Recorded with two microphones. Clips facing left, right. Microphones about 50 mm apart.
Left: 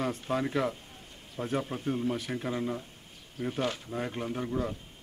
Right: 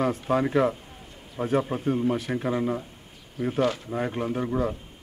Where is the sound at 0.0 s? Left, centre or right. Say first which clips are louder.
Right 7 dB; centre.